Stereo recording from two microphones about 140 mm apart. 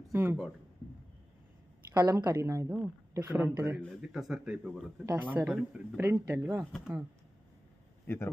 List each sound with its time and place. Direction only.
0.1 s speech: 15° right (ahead or behind)
2.0 s a woman's voice: 30° right (ahead or behind)
4.0 s a man's voice: centre (ahead or behind)
6.0 s a woman's voice: 20° right (ahead or behind)
6.6 s speech: centre (ahead or behind)